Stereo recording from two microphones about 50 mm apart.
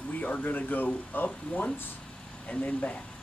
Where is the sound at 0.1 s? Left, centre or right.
Left.